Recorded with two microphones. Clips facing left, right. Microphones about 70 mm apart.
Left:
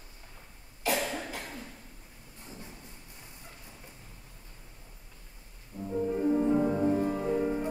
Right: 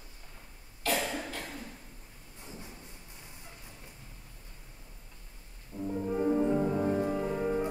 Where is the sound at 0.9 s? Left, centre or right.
Centre.